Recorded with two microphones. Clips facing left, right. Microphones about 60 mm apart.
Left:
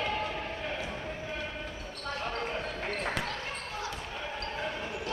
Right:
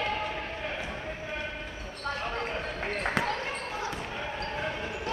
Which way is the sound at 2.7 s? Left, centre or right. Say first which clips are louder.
Right 3 dB; right.